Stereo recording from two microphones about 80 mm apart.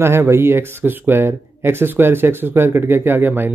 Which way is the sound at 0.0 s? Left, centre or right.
Right.